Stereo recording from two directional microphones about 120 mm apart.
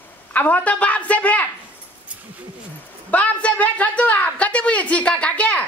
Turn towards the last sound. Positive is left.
turn(degrees=10)  # may be behind; listen again after turning